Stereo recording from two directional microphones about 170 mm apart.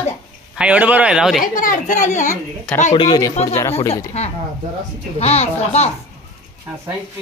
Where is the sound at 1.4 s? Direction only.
55° left (ahead or behind).